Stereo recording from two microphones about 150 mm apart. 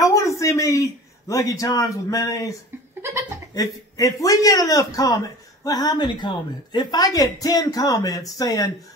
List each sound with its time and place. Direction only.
0.0 s a man's voice: 20° left (ahead or behind)
3.5 s a man's voice: 20° left (ahead or behind)